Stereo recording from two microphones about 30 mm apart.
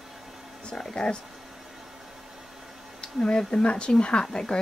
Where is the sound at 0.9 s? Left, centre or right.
Left.